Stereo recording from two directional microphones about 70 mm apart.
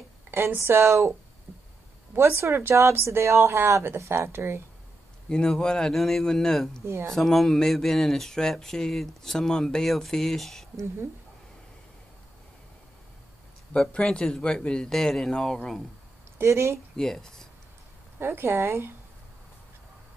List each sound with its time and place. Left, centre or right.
0.6 s speech: right
2.1 s speech: right
5.3 s a man's voice: centre
13.7 s a man's voice: centre
16.3 s speech: right
16.9 s speech: centre
18.2 s speech: right